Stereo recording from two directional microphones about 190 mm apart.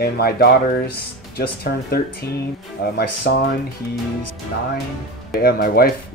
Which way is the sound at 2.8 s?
65° left (ahead or behind).